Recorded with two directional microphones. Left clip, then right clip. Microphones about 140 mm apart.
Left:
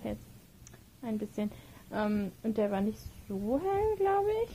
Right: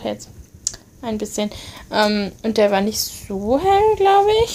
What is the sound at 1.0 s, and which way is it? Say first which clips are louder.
Speech: right 13 dB; 25° right (ahead or behind).